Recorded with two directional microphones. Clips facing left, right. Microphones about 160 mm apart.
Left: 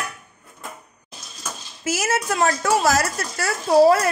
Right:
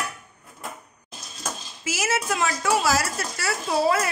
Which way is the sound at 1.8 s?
45° left (ahead or behind).